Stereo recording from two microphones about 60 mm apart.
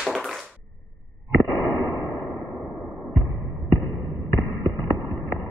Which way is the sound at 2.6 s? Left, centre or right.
Centre.